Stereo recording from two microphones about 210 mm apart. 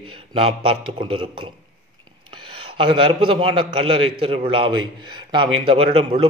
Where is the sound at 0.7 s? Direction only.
25° right (ahead or behind).